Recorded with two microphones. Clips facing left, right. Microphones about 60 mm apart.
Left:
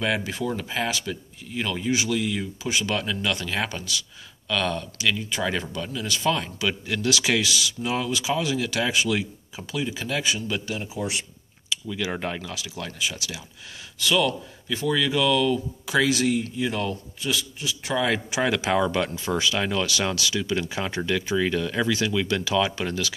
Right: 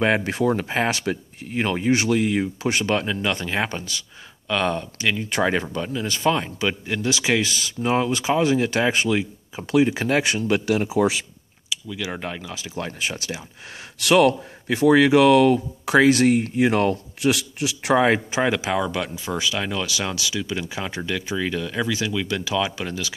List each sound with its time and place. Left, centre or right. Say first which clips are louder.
0.3 s speech: right 7 dB; right
3.1 s speech: right 3 dB; right
9.1 s speech: right 3 dB; right
9.7 s speech: right 10 dB; right
11.9 s speech: left 1 dB; centre
12.6 s speech: right 5 dB; right
14.0 s speech: right 7 dB; right
17.9 s speech: right 6 dB; right
18.4 s speech: right 2 dB; centre
18.7 s speech: left 1 dB; centre